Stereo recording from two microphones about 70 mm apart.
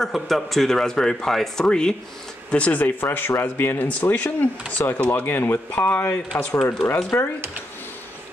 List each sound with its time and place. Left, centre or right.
0.0 s speech: centre
2.5 s speech: left